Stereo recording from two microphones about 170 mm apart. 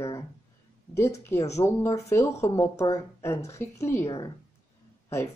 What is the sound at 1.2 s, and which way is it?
Speech, 15° left (ahead or behind).